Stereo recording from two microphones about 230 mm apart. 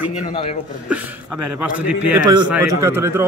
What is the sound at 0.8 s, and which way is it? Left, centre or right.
A man's voice, centre.